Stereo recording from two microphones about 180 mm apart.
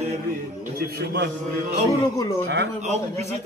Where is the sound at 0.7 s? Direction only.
65° right (ahead or behind).